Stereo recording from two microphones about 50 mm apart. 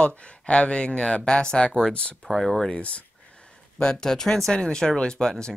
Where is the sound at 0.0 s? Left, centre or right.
Left.